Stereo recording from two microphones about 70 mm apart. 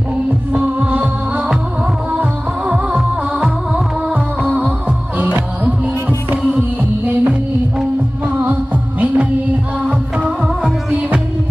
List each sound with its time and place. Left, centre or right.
0.5 s music: centre
2.7 s music: centre